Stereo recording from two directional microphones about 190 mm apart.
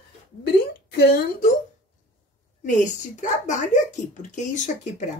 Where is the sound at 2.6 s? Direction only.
40° left (ahead or behind).